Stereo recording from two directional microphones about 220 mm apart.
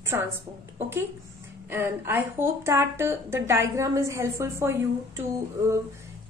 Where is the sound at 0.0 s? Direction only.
10° right (ahead or behind).